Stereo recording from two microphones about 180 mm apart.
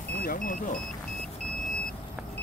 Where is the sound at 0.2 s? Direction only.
50° left (ahead or behind).